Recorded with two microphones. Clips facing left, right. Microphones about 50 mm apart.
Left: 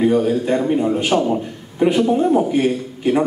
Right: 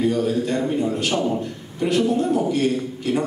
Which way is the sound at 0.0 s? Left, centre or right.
Left.